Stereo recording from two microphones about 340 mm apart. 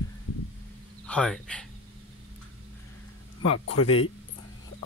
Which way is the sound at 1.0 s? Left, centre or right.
Centre.